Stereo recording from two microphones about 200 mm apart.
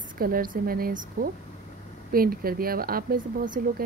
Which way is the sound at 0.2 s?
45° right (ahead or behind).